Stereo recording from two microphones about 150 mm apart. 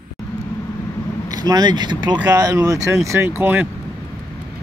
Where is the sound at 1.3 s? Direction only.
25° right (ahead or behind).